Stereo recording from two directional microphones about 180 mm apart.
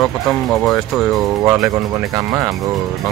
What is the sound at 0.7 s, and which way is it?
Speech, centre (ahead or behind).